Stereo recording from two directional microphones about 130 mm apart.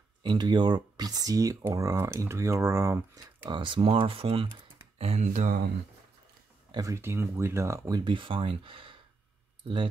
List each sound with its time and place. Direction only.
0.2 s speech: 35° right (ahead or behind)
4.9 s a sound: 50° right (ahead or behind)
5.2 s speech: 75° right (ahead or behind)
6.7 s speech: 25° right (ahead or behind)
8.0 s speech: 40° right (ahead or behind)